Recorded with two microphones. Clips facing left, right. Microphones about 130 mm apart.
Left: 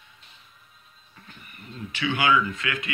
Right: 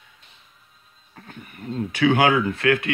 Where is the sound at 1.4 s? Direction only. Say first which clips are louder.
Right 11 dB; 70° right (ahead or behind).